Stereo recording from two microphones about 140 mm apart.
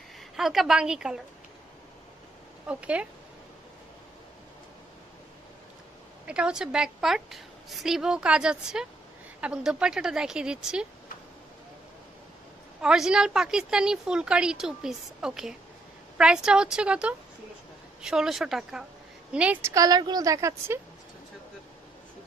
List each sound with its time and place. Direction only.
0.4 s a woman's voice: 5° right (ahead or behind)
2.6 s speech: 10° right (ahead or behind)
6.2 s a woman's voice: 5° right (ahead or behind)
12.8 s a woman's voice: 5° right (ahead or behind)
19.7 s a woman's voice: 25° right (ahead or behind)